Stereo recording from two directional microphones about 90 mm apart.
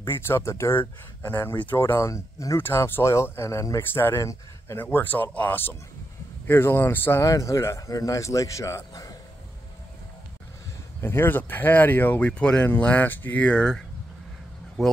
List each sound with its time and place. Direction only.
0.0 s a man's voice: 25° left (ahead or behind)
3.9 s speech: 25° left (ahead or behind)
4.2 s speech: 40° left (ahead or behind)
4.7 s a man's voice: 20° left (ahead or behind); by 9.1 s 40° left (ahead or behind)
11.0 s speech: 25° left (ahead or behind); by 14.9 s centre (ahead or behind)